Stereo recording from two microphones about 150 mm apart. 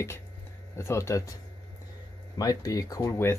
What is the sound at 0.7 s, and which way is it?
Speech, 20° left (ahead or behind).